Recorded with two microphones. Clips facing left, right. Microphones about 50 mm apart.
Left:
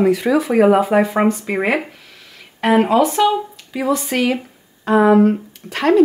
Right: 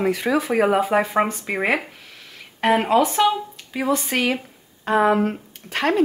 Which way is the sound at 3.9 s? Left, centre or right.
Right.